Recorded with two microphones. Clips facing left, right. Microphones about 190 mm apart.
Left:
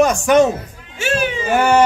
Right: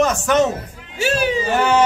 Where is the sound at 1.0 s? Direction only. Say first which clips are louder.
Even; 35° right (ahead or behind).